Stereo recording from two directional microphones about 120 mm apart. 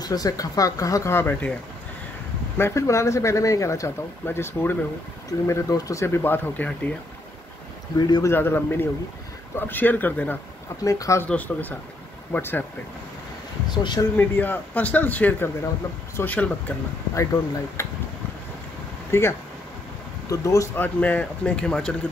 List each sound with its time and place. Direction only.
0.0 s speech: 30° left (ahead or behind); by 7.0 s 15° left (ahead or behind)
8.0 s speech: 35° left (ahead or behind)
8.3 s speech: 20° left (ahead or behind)
10.8 s speech: 25° left (ahead or behind)
11.2 s speech: 15° left (ahead or behind)
13.7 s speech: 40° left (ahead or behind)
14.1 s speech: 15° left (ahead or behind)
17.1 s speech: 25° left (ahead or behind)
19.1 s speech: 20° left (ahead or behind)
20.8 s speech: 15° left (ahead or behind)